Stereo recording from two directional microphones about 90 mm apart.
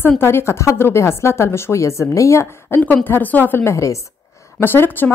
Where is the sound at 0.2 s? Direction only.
30° left (ahead or behind).